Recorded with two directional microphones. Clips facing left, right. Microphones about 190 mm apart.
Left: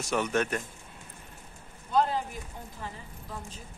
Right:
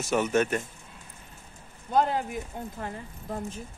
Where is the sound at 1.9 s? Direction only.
55° right (ahead or behind).